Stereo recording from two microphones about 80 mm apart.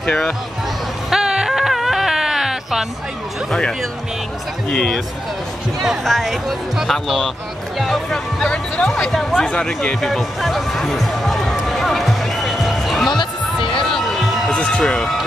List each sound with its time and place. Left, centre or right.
0.0 s speech: centre
1.1 s baby cry: centre
4.6 s speech: centre
13.1 s music: left
13.8 s a sound: centre
14.5 s speech: centre